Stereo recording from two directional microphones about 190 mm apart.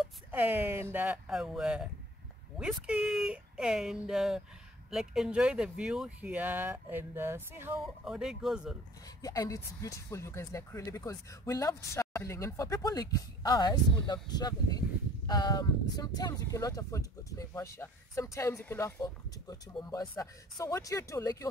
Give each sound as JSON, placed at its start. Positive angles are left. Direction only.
{"t": 0.3, "sound": "speech", "side_deg": -10}
{"t": 9.2, "sound": "speech", "side_deg": 20}